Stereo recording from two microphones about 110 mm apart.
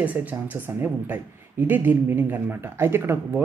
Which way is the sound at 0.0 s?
15° right (ahead or behind).